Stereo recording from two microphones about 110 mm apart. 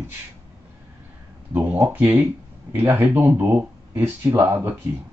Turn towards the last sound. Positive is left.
turn(degrees=-20)  # may be behind; listen again after turning